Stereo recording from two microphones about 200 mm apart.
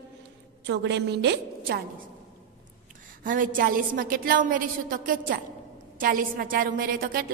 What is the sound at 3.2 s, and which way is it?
A woman's voice, 40° right (ahead or behind).